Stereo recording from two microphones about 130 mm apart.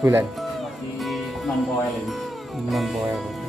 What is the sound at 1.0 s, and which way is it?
Music, centre (ahead or behind).